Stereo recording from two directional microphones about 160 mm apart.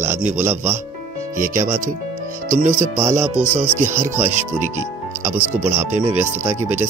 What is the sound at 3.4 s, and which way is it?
Speech, 15° right (ahead or behind).